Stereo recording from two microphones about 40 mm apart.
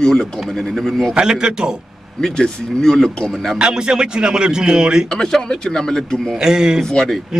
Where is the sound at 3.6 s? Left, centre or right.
Right.